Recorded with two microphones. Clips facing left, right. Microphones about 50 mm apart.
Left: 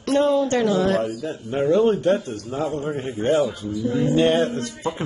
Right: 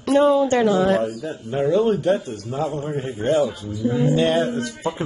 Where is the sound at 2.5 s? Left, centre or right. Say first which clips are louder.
Right 1 dB; left.